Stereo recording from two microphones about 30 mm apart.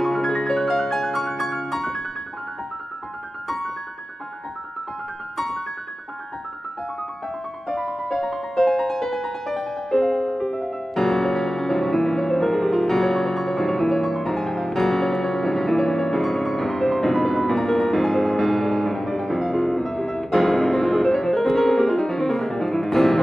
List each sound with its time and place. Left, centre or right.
0.0 s music: centre
3.4 s music: centre
7.6 s music: centre